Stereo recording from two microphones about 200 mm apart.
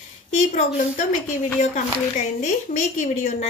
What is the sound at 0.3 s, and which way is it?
Speech, 40° left (ahead or behind).